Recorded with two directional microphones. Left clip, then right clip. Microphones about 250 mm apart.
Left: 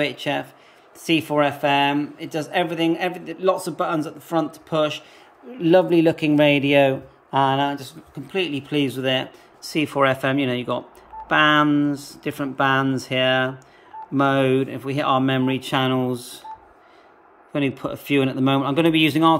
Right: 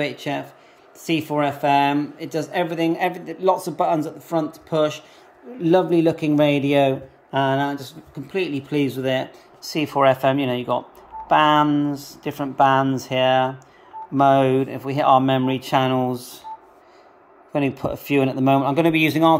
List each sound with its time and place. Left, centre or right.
0.0 s speech: centre
17.5 s a man's voice: centre
17.7 s speech: left
18.6 s speech: centre